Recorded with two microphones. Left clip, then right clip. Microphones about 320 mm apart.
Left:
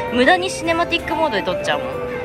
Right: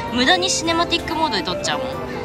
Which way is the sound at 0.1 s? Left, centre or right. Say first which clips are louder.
Left 2 dB; centre.